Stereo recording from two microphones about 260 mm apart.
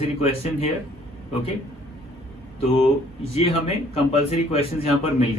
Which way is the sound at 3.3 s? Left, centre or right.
Left.